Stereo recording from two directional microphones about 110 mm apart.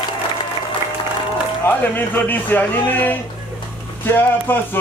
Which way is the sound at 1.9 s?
20° left (ahead or behind).